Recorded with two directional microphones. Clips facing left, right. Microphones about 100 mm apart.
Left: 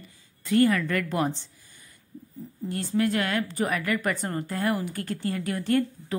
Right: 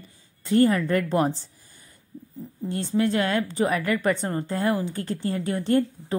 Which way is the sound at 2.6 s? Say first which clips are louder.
Right 2 dB; 25° right (ahead or behind).